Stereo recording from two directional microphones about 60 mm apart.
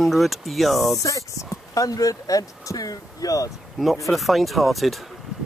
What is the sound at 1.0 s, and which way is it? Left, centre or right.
Speech, left.